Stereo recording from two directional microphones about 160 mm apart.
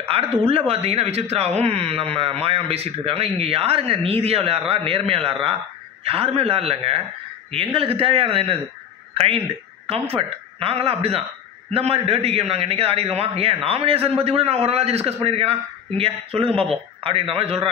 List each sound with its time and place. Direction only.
0.3 s speech: 40° right (ahead or behind)